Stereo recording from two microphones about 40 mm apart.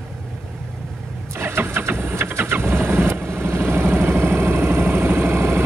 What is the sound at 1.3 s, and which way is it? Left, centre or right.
Vehicle, right.